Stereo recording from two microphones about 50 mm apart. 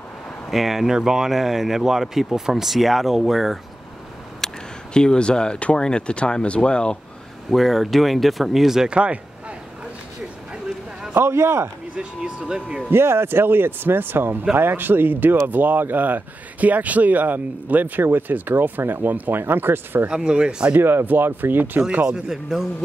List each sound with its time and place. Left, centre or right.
0.5 s speech: centre
4.4 s a sound: centre
4.9 s speech: centre
7.4 s speech: centre
8.9 s speech: right
11.1 s a man's voice: right
12.0 s speech: right
12.9 s speech: right
19.4 s speech: right
20.1 s speech: centre
20.7 s speech: right
22.0 s speech: centre